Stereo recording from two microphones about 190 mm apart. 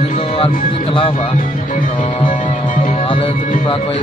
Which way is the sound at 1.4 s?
45° left (ahead or behind).